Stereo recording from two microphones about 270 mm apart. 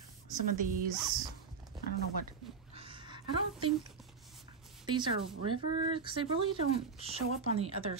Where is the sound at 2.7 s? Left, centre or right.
Centre.